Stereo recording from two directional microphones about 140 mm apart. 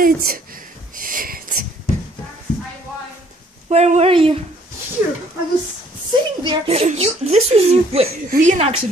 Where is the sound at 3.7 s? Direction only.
50° right (ahead or behind).